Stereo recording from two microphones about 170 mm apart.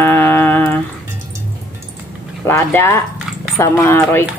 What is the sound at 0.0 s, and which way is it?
Music, 15° left (ahead or behind).